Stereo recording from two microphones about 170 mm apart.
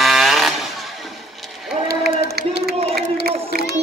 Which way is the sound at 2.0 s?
70° right (ahead or behind).